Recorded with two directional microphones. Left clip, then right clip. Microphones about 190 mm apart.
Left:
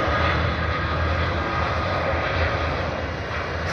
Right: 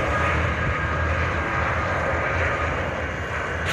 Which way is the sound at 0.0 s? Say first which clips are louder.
Left 1 dB; 20° right (ahead or behind).